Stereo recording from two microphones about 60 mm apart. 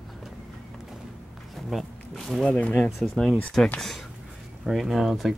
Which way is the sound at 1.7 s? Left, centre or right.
Centre.